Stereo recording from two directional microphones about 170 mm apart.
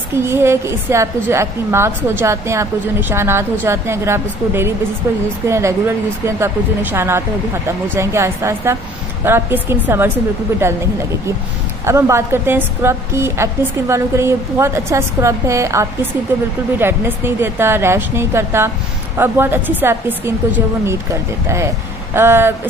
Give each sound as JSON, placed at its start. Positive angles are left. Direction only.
{"t": 0.2, "sound": "a woman's voice", "side_deg": -15}
{"t": 11.8, "sound": "a woman's voice", "side_deg": -15}